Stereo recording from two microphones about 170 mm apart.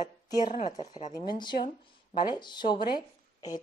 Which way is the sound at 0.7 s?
25° left (ahead or behind).